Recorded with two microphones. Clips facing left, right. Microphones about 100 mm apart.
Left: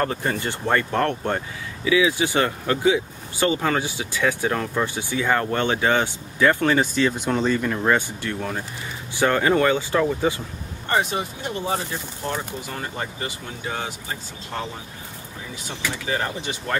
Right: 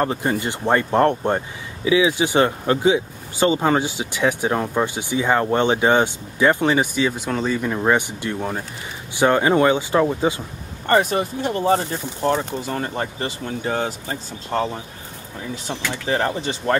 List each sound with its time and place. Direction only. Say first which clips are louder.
0.0 s speech: right 3 dB; 20° right (ahead or behind)
7.1 s speech: left 1 dB; centre (ahead or behind)
7.5 s speech: right 2 dB; 15° right (ahead or behind)
10.9 s speech: right 5 dB; 50° right (ahead or behind)
12.3 s speech: right 8 dB; 35° right (ahead or behind)
16.1 s speech: right 6 dB; 35° right (ahead or behind)